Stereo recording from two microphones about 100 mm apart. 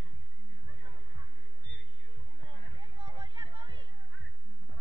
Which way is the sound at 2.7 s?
50° right (ahead or behind).